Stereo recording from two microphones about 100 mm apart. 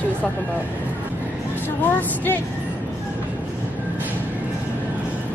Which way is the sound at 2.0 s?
20° left (ahead or behind).